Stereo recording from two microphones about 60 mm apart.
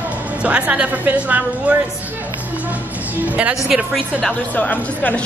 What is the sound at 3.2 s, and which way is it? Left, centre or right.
Speech, right.